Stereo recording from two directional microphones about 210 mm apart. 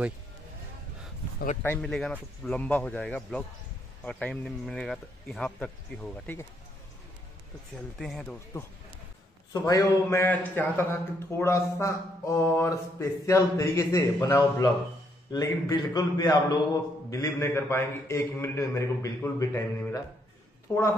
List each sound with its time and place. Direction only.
1.6 s a man's voice: 5° left (ahead or behind)
8.0 s a man's voice: centre (ahead or behind)
9.5 s a man's voice: 15° left (ahead or behind)